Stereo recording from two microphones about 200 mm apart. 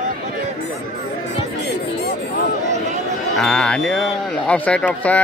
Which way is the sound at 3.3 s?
5° left (ahead or behind).